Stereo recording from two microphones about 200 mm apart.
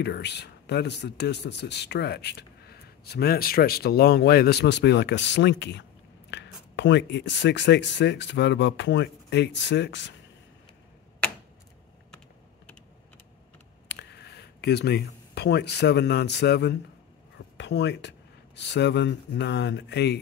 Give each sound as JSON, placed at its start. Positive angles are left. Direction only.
{"t": 0.0, "sound": "speech", "side_deg": 55}
{"t": 13.8, "sound": "speech", "side_deg": 55}